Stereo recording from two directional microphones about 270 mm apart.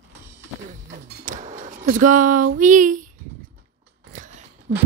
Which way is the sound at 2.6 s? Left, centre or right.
Right.